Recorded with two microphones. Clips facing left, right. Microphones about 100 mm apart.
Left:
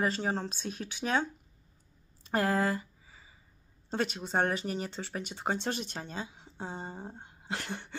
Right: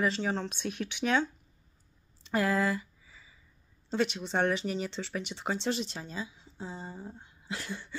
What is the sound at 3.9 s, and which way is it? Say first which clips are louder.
Speech: right 1 dB; 45° left (ahead or behind).